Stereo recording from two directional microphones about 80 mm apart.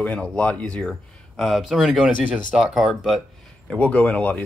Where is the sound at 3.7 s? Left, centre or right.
Centre.